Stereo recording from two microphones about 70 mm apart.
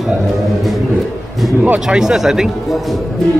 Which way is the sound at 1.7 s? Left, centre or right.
Centre.